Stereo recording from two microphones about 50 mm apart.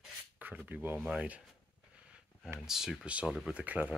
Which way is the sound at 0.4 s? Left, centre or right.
Right.